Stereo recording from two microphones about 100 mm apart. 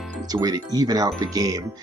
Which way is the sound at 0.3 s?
40° right (ahead or behind).